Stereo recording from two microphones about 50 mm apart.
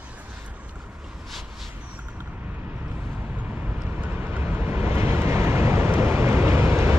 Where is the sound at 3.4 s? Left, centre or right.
Right.